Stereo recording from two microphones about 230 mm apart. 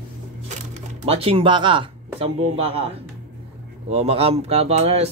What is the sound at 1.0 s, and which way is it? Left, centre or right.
Speech, right.